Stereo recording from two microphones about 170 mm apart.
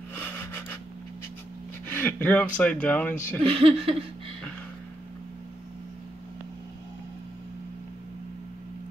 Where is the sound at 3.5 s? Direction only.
35° right (ahead or behind).